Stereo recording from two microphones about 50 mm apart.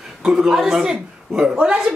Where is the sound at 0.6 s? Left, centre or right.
Centre.